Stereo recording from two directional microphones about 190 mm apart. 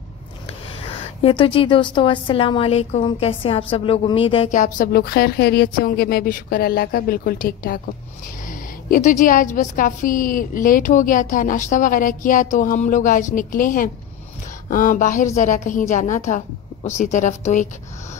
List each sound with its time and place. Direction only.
1.2 s a woman's voice: 25° left (ahead or behind)